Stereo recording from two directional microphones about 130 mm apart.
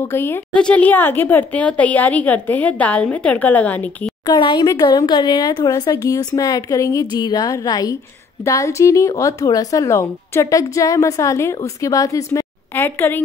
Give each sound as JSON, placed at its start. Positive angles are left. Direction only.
{"t": 0.0, "sound": "speech", "side_deg": 20}
{"t": 4.3, "sound": "speech", "side_deg": 35}